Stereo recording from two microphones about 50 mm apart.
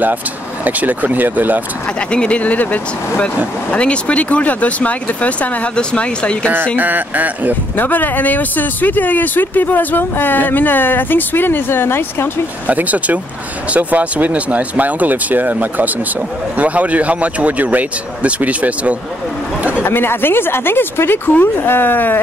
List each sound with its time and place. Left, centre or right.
0.7 s speech: right
2.0 s speech: left
6.8 s speech: right
7.7 s speech: left
12.6 s speech: right
19.8 s speech: left